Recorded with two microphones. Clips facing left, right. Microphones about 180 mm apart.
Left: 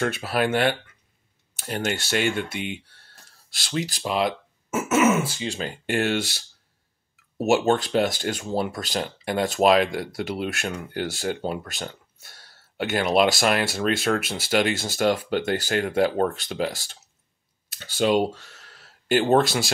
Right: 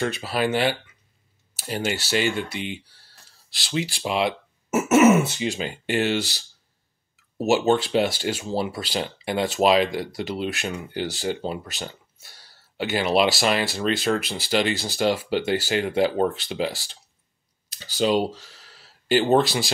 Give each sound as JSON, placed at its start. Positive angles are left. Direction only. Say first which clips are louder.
{"t": 0.0, "sound": "speech", "louder": "even", "side_deg": 0}
{"t": 4.8, "sound": "speech", "louder": "right 4 dB", "side_deg": -25}
{"t": 5.9, "sound": "speech", "louder": "right 1 dB", "side_deg": 0}